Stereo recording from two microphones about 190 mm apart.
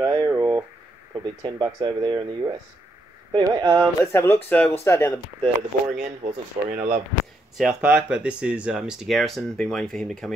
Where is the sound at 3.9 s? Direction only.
15° left (ahead or behind).